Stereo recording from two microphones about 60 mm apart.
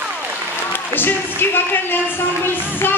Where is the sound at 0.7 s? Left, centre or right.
Left.